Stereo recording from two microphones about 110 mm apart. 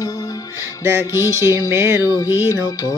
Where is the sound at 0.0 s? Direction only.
35° left (ahead or behind).